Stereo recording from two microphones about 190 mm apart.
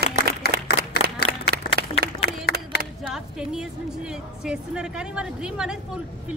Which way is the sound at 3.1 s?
5° right (ahead or behind).